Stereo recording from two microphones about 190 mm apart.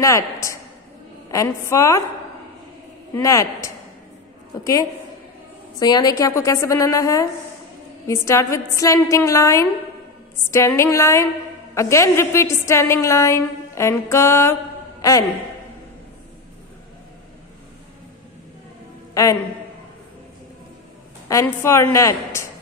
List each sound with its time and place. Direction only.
0.0 s a woman's voice: 15° left (ahead or behind)
3.2 s a woman's voice: 15° left (ahead or behind)
5.8 s a woman's voice: 20° left (ahead or behind)
21.3 s a woman's voice: 15° left (ahead or behind)